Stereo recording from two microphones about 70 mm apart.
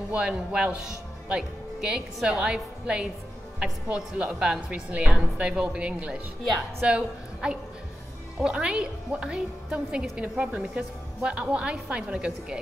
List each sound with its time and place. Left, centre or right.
0.1 s a woman's voice: centre